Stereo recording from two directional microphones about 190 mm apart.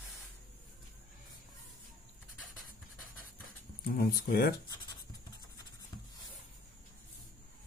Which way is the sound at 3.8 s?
50° left (ahead or behind).